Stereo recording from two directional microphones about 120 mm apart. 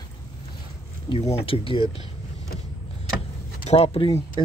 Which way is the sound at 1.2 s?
60° left (ahead or behind).